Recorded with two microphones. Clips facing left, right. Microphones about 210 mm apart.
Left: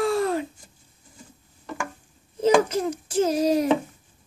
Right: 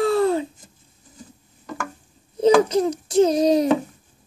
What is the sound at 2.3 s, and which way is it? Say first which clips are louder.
A child's voice: right 4 dB; 35° right (ahead or behind).